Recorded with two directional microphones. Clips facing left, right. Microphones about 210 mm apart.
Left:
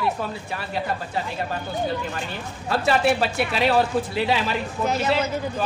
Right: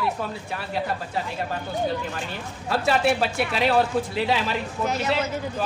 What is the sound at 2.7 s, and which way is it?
Speech, centre (ahead or behind).